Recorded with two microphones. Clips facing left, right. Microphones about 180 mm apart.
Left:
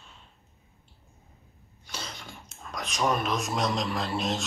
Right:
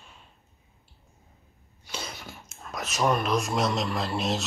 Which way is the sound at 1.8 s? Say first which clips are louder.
Right 2 dB; 10° right (ahead or behind).